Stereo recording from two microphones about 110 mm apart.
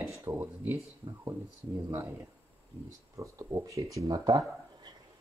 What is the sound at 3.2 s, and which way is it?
Speech, 30° right (ahead or behind).